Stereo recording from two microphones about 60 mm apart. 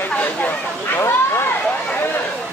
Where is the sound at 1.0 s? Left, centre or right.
Left.